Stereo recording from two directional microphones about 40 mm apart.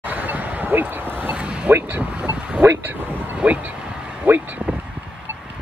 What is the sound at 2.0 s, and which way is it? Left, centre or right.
Boat, right.